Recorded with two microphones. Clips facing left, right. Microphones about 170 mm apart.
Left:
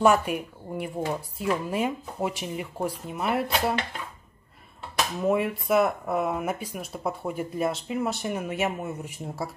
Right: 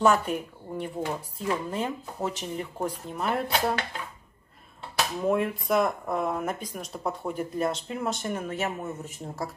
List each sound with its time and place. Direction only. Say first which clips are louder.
0.0 s speech: left 2 dB; 10° left (ahead or behind)
5.2 s speech: left 1 dB; 5° left (ahead or behind)